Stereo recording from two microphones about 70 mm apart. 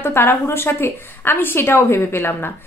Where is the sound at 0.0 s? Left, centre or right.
Left.